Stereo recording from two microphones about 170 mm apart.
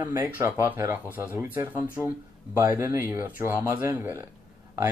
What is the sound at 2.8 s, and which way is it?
Speech, 10° right (ahead or behind).